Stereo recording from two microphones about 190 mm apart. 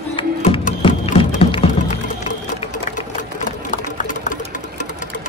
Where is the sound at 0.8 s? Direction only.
25° left (ahead or behind).